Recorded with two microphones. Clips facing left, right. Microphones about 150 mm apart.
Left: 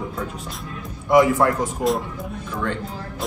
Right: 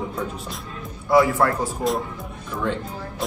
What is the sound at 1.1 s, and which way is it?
Speech, 20° left (ahead or behind).